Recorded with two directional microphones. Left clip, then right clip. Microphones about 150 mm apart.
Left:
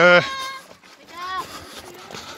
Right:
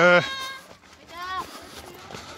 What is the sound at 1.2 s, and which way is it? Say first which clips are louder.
Boat: left 3 dB; centre (ahead or behind).